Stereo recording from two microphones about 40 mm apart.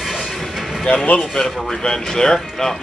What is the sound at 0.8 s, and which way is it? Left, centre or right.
Speech, left.